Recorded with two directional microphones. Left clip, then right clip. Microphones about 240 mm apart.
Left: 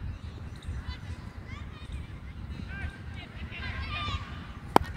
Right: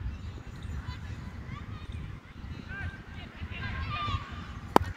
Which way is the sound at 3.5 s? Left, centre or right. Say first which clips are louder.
Even; left.